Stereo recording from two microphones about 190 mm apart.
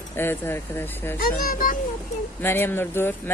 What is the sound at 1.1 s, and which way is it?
Speech, 50° left (ahead or behind).